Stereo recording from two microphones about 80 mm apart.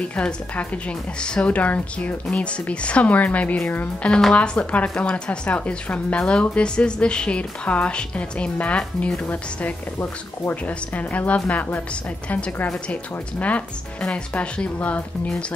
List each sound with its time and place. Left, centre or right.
0.0 s speech: centre
4.1 s a woman's voice: centre